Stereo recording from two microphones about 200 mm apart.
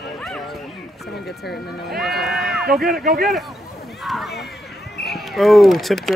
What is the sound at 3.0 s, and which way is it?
Speech, 50° right (ahead or behind).